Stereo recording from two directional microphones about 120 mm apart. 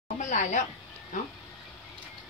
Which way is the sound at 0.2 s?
90° left.